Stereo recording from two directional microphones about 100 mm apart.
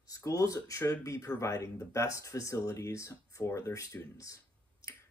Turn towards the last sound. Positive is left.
turn(degrees=30)  # may be behind; listen again after turning